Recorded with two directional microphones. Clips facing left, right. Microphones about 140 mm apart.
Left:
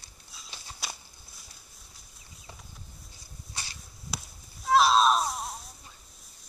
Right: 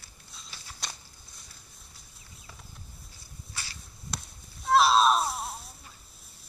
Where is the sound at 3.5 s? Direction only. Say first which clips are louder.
Left 1 dB; 15° left (ahead or behind).